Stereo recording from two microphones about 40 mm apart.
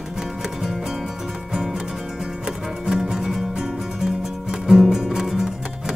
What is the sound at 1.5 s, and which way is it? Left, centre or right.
Music, centre.